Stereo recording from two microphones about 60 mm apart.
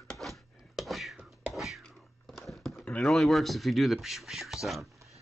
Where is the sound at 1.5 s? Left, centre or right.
Centre.